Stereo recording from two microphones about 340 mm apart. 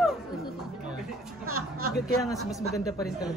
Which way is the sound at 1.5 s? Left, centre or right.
Right.